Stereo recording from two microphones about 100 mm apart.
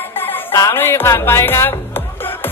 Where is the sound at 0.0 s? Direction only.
20° left (ahead or behind).